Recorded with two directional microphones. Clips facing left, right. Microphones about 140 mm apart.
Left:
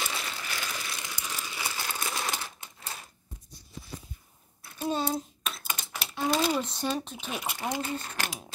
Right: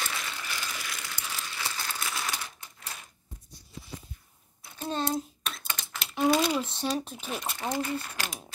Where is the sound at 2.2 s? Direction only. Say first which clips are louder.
Left 2 dB; 25° left (ahead or behind).